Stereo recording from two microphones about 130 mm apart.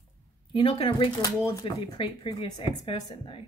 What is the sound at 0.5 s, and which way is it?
A woman's voice, 40° left (ahead or behind).